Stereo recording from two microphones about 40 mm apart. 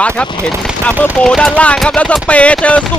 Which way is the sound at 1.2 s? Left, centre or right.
Centre.